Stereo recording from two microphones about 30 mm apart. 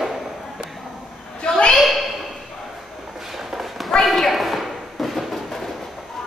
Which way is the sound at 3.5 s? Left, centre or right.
Centre.